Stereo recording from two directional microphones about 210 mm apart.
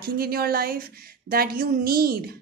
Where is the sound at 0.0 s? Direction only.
45° right (ahead or behind).